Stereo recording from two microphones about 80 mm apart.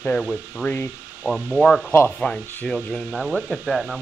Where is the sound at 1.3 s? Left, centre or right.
Right.